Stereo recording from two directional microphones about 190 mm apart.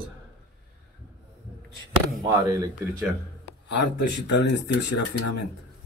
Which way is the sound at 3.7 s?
70° left (ahead or behind).